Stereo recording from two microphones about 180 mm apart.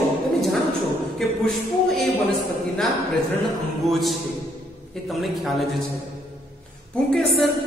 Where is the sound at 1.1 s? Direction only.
Centre (ahead or behind).